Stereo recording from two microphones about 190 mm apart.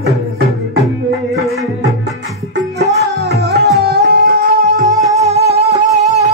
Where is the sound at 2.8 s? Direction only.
60° right (ahead or behind).